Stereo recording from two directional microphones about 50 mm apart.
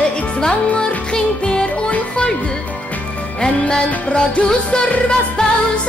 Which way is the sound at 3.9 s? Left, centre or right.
Left.